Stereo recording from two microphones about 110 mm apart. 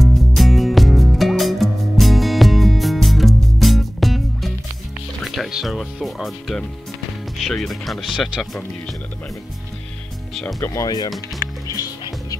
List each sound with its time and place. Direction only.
0.0 s music: centre (ahead or behind)
5.2 s speech: centre (ahead or behind)
10.4 s speech: 25° left (ahead or behind)
11.1 s music: 35° left (ahead or behind)